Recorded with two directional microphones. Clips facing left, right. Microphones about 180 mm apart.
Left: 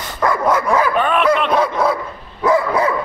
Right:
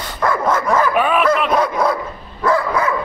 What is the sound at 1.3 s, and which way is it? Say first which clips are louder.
Dog: even; 5° right (ahead or behind).